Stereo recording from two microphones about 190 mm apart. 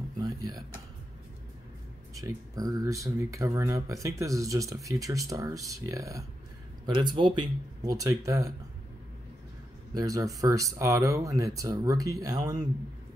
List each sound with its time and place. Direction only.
0.2 s a sound: 20° right (ahead or behind)
2.1 s speech: 20° right (ahead or behind)
9.9 s speech: 20° right (ahead or behind)